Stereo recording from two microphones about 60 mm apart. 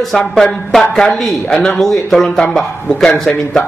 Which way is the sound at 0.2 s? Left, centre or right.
Centre.